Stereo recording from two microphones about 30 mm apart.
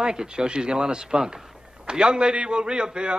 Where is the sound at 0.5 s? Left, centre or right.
Right.